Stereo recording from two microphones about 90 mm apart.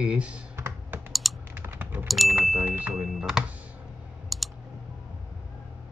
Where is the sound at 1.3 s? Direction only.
Centre (ahead or behind).